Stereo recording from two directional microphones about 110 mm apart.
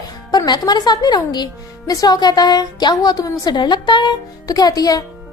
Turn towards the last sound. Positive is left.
turn(degrees=35)  # may be behind; listen again after turning